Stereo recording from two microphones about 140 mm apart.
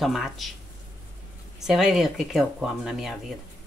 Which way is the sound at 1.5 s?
5° right (ahead or behind).